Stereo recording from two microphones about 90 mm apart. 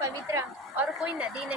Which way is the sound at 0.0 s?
35° right (ahead or behind).